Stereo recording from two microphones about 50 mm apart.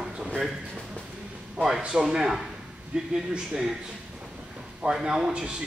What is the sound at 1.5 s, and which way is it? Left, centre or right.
A man's voice, centre.